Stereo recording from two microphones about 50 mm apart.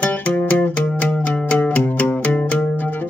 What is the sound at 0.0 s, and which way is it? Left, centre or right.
Music, left.